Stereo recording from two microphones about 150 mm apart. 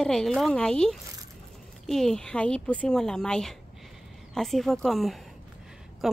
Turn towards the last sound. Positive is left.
turn(degrees=0)  # may be behind; listen again after turning